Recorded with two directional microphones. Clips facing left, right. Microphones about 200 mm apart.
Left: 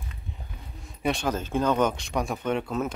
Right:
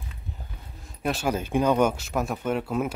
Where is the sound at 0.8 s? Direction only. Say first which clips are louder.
Even; centre (ahead or behind).